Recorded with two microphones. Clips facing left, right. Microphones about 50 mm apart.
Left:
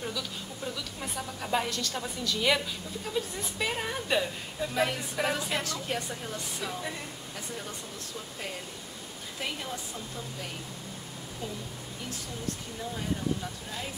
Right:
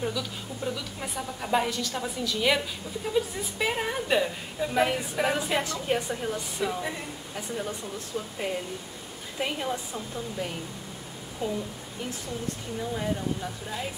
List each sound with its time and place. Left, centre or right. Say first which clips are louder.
0.0 s a woman's voice: right 4 dB; centre
12.9 s a woman's voice: right 1 dB; centre